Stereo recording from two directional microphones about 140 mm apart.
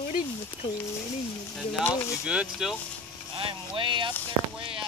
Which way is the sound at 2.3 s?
5° right (ahead or behind).